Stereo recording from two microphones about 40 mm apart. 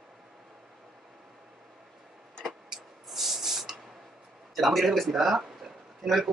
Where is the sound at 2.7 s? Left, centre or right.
Centre.